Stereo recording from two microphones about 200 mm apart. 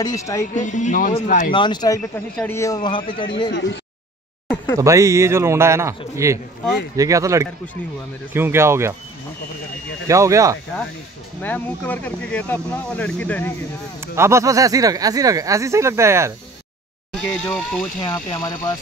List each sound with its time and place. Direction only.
0.0 s speech: 15° left (ahead or behind)
0.6 s speech: 40° left (ahead or behind)
1.5 s a man's voice: 20° left (ahead or behind)
4.7 s speech: 15° right (ahead or behind)
10.0 s speech: 15° right (ahead or behind)
11.4 s speech: 10° left (ahead or behind)
14.0 s speech: 15° right (ahead or behind)
17.5 s speech: 10° left (ahead or behind)